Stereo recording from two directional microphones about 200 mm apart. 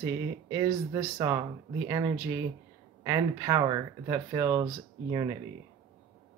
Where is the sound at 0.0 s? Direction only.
15° right (ahead or behind).